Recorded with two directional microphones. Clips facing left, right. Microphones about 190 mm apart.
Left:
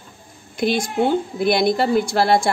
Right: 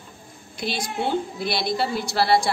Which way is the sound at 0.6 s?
50° left (ahead or behind).